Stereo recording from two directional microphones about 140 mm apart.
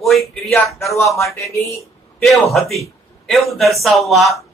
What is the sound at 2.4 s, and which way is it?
Speech, centre (ahead or behind).